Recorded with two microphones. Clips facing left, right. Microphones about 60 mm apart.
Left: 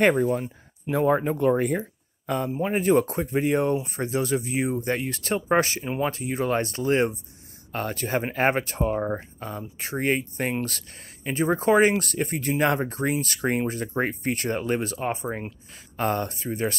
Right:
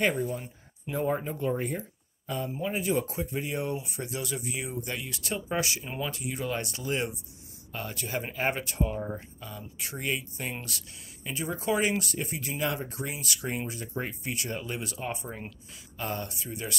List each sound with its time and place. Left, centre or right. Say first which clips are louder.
0.0 s speech: left 8 dB; left
1.3 s speech: left 8 dB; left
3.7 s speech: left 9 dB; left
9.0 s speech: left 8 dB; left
16.0 s speech: left 9 dB; left